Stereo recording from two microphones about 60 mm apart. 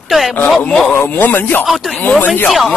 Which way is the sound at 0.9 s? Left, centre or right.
Left.